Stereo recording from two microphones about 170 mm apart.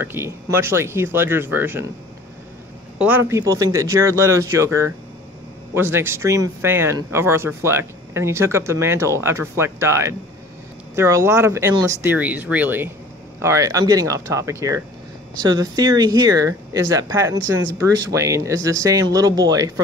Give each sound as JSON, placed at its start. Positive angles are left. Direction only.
{"t": 0.0, "sound": "speech", "side_deg": -15}
{"t": 3.0, "sound": "speech", "side_deg": -10}